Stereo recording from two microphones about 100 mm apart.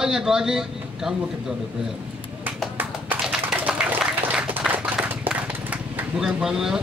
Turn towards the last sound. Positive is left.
turn(degrees=-5)  # may be behind; listen again after turning